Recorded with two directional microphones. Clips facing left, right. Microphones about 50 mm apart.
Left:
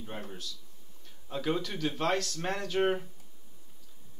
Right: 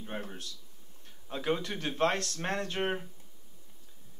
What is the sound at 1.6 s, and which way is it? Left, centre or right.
A man's voice, right.